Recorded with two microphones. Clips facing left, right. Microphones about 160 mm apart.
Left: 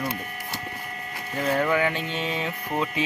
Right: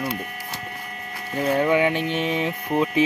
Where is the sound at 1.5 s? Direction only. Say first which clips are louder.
Right 4 dB; 20° right (ahead or behind).